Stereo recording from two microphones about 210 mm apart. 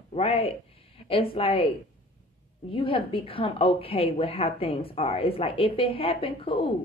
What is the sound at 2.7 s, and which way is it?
A woman's voice, 25° left (ahead or behind).